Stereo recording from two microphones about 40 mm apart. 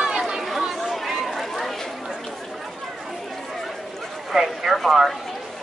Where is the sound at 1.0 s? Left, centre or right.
Centre.